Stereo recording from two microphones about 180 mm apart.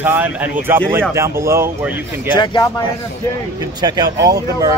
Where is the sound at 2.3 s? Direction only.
25° left (ahead or behind).